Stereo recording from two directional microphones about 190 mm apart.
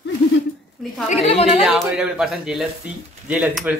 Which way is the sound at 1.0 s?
35° left (ahead or behind).